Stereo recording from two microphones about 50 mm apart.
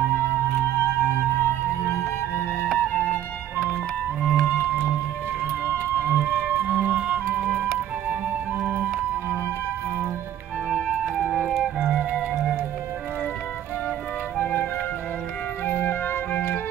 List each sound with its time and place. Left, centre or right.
0.1 s music: left
2.7 s music: left
4.2 s music: centre
4.5 s music: right
5.7 s music: right
6.1 s music: right
6.6 s music: right
6.9 s music: right
11.2 s music: right
14.4 s music: left